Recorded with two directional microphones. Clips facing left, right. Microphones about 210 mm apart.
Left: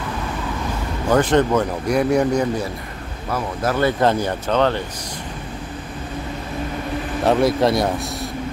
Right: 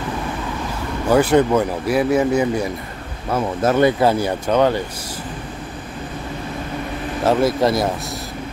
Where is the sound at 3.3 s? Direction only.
25° right (ahead or behind).